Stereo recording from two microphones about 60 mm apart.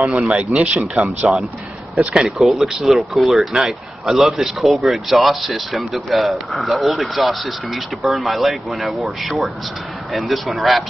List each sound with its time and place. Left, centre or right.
0.3 s speech: centre
1.3 s speech: centre